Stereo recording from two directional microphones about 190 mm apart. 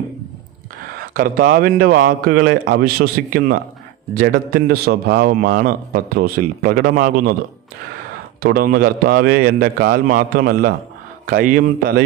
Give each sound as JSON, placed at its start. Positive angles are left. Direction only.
{"t": 1.1, "sound": "a man's voice", "side_deg": -50}
{"t": 8.4, "sound": "a man's voice", "side_deg": -55}